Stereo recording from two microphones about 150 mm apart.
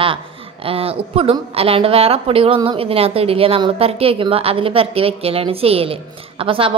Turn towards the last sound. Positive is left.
turn(degrees=-35)  # may be behind; listen again after turning